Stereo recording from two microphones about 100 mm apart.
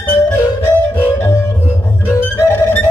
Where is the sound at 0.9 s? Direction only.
20° left (ahead or behind).